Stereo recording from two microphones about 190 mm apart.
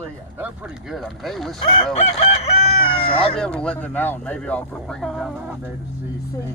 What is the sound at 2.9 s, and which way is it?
Speech, 30° left (ahead or behind).